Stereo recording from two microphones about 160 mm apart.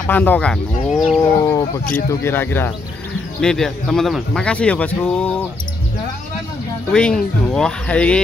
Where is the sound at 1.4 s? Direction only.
20° left (ahead or behind).